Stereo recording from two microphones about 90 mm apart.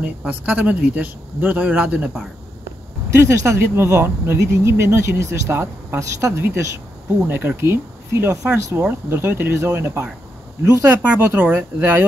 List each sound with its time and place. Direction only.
0.2 s a man's voice: 15° right (ahead or behind)
3.2 s speech: 30° right (ahead or behind)
7.2 s speech: 20° right (ahead or behind)
11.0 s a man's voice: 15° right (ahead or behind)